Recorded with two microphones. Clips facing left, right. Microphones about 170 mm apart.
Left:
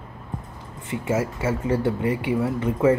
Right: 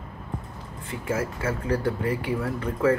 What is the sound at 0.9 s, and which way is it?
Speech, 25° left (ahead or behind).